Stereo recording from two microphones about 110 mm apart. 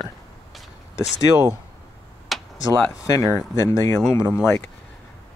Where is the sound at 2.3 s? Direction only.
Centre (ahead or behind).